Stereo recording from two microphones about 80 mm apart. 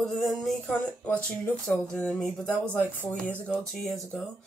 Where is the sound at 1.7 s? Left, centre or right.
Centre.